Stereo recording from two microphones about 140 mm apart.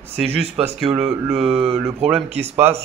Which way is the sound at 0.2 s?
45° right (ahead or behind).